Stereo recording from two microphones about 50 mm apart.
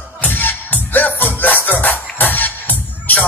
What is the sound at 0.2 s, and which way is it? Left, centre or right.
Music, left.